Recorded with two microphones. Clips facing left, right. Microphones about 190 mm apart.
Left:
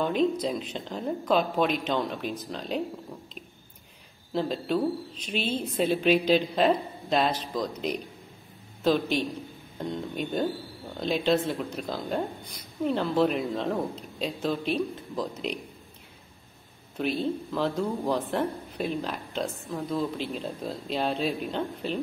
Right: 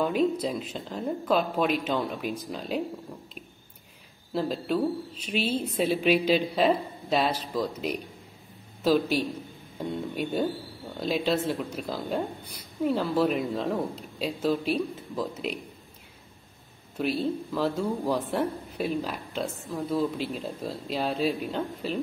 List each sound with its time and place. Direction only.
0.0 s speech: 5° right (ahead or behind)
4.3 s speech: 5° right (ahead or behind)
16.9 s speech: 5° right (ahead or behind)